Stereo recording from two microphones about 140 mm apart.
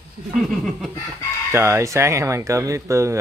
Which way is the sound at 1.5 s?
20° right (ahead or behind).